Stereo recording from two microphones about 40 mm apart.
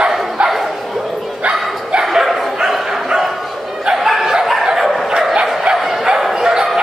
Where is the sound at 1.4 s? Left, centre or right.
Right.